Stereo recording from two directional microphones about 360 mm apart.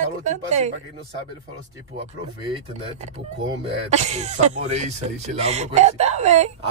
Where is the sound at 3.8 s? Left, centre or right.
Centre.